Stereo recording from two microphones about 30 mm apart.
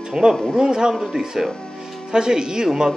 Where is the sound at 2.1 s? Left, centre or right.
Right.